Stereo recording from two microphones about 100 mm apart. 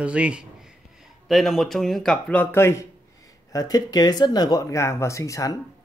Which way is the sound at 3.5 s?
40° left (ahead or behind).